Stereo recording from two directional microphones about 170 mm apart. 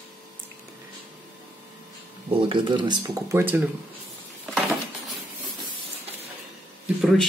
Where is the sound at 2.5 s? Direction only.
25° right (ahead or behind); by 3.7 s 10° right (ahead or behind).